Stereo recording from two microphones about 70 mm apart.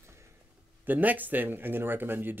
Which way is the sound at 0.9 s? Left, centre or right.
Right.